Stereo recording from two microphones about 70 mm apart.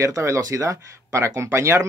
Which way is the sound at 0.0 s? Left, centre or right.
Right.